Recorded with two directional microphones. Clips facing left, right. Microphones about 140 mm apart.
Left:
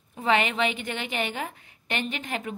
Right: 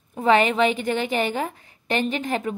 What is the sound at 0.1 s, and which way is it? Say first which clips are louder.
A woman's voice: right 6 dB; 40° right (ahead or behind).